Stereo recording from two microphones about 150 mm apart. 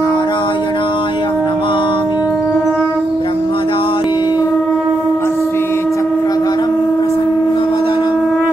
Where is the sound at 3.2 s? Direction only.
35° left (ahead or behind).